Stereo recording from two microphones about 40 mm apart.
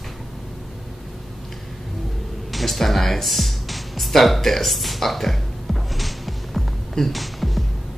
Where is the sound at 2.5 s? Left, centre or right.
Centre.